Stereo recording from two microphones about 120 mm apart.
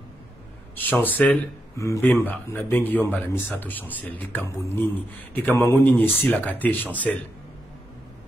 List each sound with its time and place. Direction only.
0.7 s speech: 15° left (ahead or behind)
1.8 s speech: 25° left (ahead or behind)